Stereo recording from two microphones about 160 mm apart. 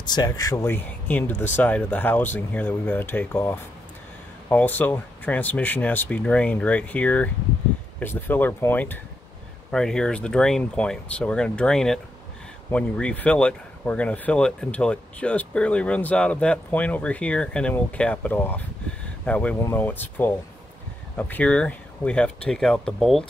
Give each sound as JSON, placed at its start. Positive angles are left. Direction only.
{"t": 0.0, "sound": "speech", "side_deg": 25}